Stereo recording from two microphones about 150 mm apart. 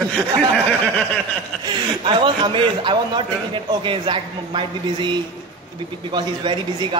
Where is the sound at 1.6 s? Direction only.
30° right (ahead or behind).